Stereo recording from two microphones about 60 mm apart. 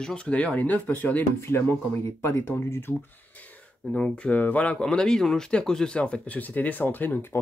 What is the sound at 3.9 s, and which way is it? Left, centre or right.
Speech, centre.